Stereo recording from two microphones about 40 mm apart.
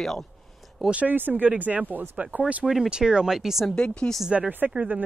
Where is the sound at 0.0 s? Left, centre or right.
Centre.